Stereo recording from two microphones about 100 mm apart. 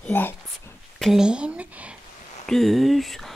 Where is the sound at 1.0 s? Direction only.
5° right (ahead or behind).